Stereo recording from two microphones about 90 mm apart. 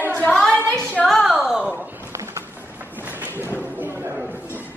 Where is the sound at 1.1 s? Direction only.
Centre (ahead or behind).